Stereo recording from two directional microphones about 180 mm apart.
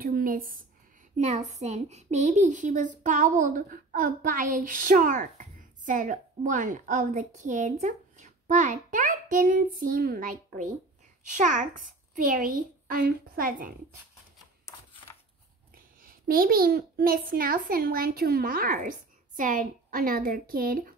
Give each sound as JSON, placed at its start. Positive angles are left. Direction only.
{"t": 0.0, "sound": "a woman's voice", "side_deg": -50}
{"t": 15.7, "sound": "a child's voice", "side_deg": -55}